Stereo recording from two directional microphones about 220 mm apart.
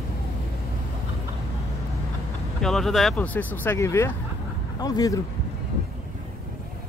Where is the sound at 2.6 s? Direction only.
Centre (ahead or behind); by 5.1 s 15° left (ahead or behind).